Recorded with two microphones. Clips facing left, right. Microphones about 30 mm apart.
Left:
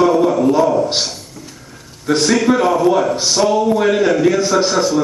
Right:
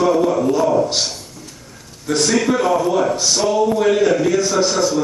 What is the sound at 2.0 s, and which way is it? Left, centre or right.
A man's voice, centre.